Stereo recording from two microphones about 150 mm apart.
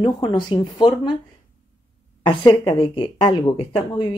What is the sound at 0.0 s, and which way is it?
Speech, 30° left (ahead or behind).